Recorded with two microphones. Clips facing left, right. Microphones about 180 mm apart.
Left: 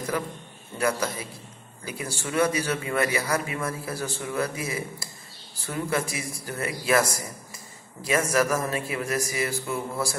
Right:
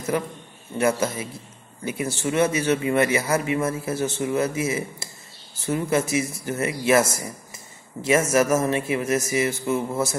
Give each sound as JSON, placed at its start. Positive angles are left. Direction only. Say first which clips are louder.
{"t": 0.1, "sound": "a man's voice", "louder": "right 4 dB", "side_deg": -25}